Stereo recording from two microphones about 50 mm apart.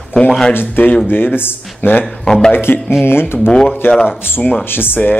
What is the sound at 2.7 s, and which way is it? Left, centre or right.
Speech, left.